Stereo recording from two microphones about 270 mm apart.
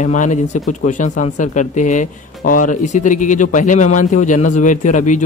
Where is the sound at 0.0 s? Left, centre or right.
Left.